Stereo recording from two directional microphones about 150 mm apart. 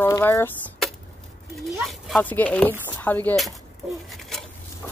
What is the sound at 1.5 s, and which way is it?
Speech, centre (ahead or behind).